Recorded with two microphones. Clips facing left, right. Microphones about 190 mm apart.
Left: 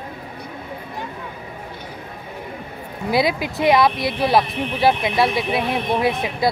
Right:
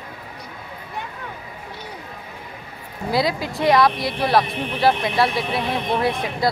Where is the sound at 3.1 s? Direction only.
20° left (ahead or behind).